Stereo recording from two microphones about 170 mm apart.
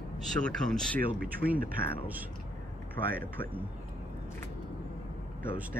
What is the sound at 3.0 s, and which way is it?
Speech, 25° left (ahead or behind).